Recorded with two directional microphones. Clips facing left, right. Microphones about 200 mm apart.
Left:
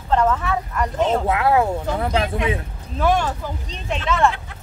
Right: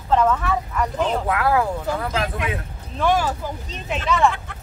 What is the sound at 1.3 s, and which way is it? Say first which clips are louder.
Speech: left 2 dB; 25° left (ahead or behind).